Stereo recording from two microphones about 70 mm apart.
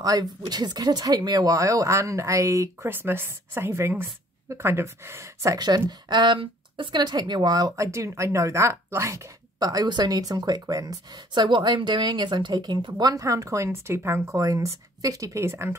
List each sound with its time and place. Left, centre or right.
0.0 s speech: right
2.9 s speech: right
5.6 s speech: right
7.7 s speech: right
9.6 s speech: right
11.1 s a woman's voice: right
13.0 s speech: right